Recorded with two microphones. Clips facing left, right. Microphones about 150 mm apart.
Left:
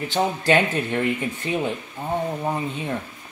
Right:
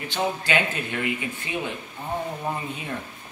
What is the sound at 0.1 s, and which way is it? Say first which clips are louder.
Speech: left 5 dB; 35° left (ahead or behind).